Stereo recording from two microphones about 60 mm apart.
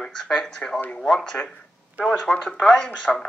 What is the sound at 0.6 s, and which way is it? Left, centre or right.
Speech, centre.